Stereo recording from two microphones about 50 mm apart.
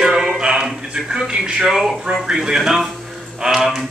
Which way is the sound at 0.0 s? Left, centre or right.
Centre.